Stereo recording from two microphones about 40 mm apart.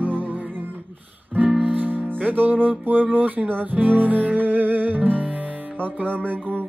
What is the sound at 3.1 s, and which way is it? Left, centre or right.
Speech, right.